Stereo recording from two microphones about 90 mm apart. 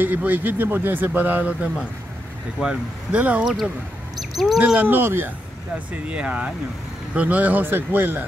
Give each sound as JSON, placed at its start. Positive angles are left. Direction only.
{"t": 0.0, "sound": "speech", "side_deg": -20}
{"t": 3.4, "sound": "speech", "side_deg": -5}
{"t": 4.2, "sound": "a sound", "side_deg": 0}
{"t": 4.6, "sound": "speech", "side_deg": -15}
{"t": 6.0, "sound": "speech", "side_deg": -15}